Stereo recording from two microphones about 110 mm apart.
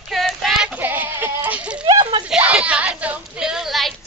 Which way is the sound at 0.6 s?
5° right (ahead or behind).